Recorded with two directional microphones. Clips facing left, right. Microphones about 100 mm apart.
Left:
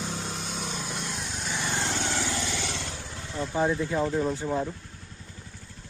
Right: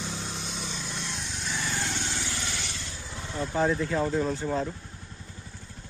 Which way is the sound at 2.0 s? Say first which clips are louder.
Left 5 dB; 90° left.